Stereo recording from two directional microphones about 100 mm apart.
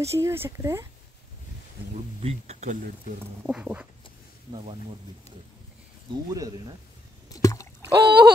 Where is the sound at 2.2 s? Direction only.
90° right.